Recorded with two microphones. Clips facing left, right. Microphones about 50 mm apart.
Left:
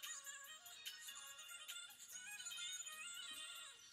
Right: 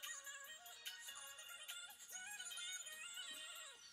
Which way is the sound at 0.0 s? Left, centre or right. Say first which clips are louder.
Right 2 dB; right.